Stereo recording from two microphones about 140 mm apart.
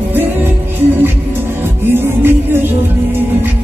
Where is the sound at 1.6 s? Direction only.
15° right (ahead or behind).